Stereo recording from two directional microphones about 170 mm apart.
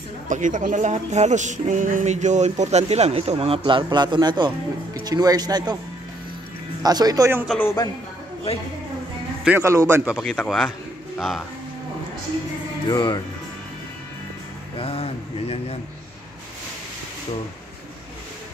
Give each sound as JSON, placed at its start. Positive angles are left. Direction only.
{"t": 0.3, "sound": "speech", "side_deg": -50}
{"t": 6.8, "sound": "speech", "side_deg": -25}
{"t": 7.4, "sound": "a man's voice", "side_deg": 10}
{"t": 9.4, "sound": "speech", "side_deg": -10}
{"t": 10.1, "sound": "speech", "side_deg": 5}
{"t": 12.8, "sound": "speech", "side_deg": 25}
{"t": 14.8, "sound": "speech", "side_deg": 35}